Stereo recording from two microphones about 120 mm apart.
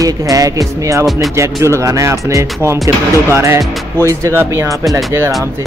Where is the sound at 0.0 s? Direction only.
30° right (ahead or behind).